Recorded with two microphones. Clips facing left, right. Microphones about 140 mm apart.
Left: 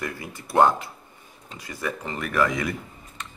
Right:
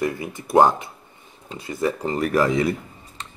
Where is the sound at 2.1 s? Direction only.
35° right (ahead or behind).